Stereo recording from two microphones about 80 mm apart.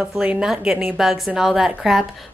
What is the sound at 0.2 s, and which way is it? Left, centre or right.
A woman's voice, centre.